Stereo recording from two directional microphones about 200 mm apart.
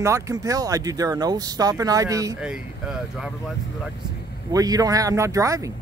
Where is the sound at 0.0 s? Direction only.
15° right (ahead or behind).